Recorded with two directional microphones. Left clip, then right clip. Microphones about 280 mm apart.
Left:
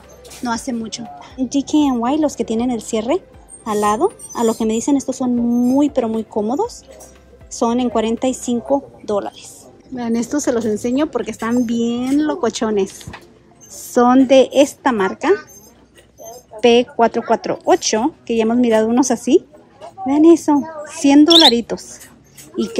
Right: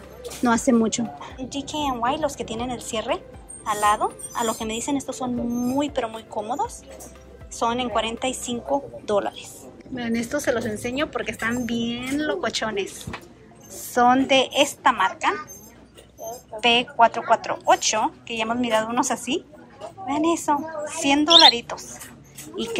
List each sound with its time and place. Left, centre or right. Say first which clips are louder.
0.4 s speech: right 3 dB; centre
1.5 s speech: left 9 dB; left
16.6 s speech: left 5 dB; left